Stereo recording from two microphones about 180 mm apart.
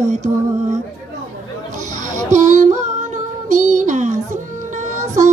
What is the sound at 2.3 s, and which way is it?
Child singing, 40° right (ahead or behind).